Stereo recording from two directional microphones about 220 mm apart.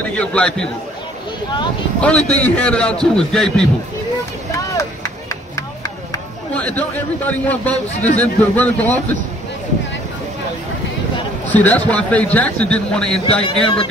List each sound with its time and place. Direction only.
0.1 s a man's voice: 5° left (ahead or behind)
2.0 s a man's voice: 5° left (ahead or behind)
6.5 s a man's voice: 5° left (ahead or behind)
11.5 s a man's voice: 5° left (ahead or behind)
13.2 s speech: 25° left (ahead or behind)